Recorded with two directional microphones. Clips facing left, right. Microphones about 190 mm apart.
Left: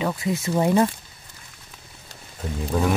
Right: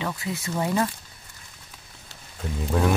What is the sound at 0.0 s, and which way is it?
Speech, 20° left (ahead or behind).